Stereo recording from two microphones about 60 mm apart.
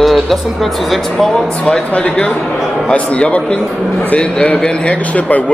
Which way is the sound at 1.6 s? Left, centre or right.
Centre.